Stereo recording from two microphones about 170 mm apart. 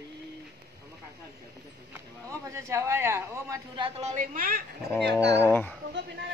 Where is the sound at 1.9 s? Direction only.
15° right (ahead or behind).